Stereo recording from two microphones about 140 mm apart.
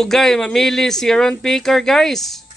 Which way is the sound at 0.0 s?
Centre (ahead or behind).